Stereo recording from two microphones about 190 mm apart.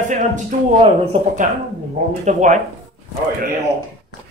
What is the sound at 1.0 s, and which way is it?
Speech, 40° right (ahead or behind).